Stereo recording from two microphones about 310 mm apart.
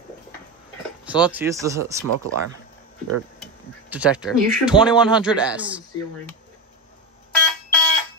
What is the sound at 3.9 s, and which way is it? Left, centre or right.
Speech, centre.